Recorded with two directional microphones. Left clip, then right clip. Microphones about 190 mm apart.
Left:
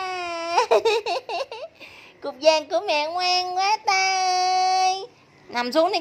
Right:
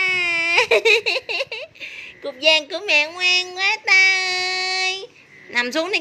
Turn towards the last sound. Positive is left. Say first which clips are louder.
# even
turn(degrees=15)  # may be behind; listen again after turning